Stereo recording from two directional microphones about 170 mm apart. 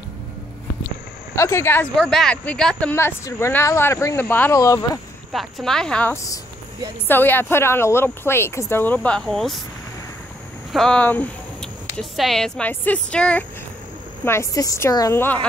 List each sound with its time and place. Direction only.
1.3 s speech: 15° left (ahead or behind)
2.0 s speech: centre (ahead or behind); by 5.0 s 20° left (ahead or behind)
5.3 s speech: centre (ahead or behind)
6.1 s speech: 20° left (ahead or behind); by 9.6 s centre (ahead or behind)
10.7 s speech: 5° left (ahead or behind)